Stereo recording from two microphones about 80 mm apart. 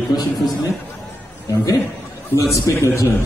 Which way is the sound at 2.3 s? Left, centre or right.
Left.